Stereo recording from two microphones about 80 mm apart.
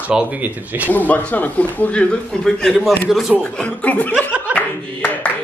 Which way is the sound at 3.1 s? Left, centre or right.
Centre.